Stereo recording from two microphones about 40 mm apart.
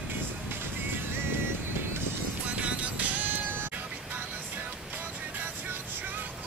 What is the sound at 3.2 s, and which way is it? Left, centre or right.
Bleat, right.